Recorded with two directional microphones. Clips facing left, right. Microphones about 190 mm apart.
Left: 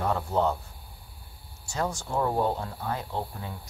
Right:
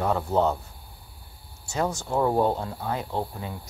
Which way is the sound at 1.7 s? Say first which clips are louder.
Right 3 dB; 20° right (ahead or behind).